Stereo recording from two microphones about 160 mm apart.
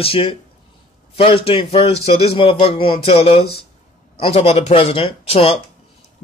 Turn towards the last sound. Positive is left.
turn(degrees=35)  # may be behind; listen again after turning